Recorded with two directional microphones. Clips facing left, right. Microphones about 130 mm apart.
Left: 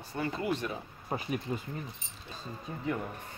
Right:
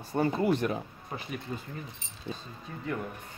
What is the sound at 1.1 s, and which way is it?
Speech, 35° left (ahead or behind).